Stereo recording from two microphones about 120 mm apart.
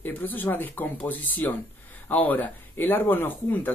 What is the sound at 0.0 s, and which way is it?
Speech, 15° left (ahead or behind).